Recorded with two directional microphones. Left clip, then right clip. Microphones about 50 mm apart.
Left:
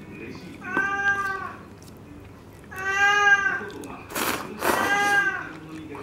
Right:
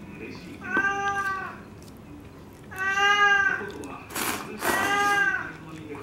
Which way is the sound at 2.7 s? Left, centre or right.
Centre.